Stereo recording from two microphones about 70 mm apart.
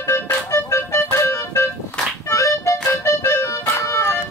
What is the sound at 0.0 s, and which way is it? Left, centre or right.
Music, left.